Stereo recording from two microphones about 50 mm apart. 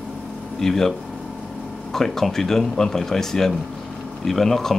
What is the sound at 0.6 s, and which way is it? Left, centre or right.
Speech, centre.